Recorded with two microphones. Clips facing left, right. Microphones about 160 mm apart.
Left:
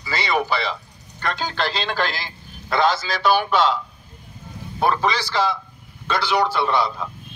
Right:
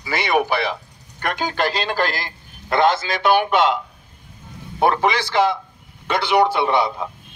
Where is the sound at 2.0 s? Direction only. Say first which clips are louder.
Right 3 dB; 45° right (ahead or behind).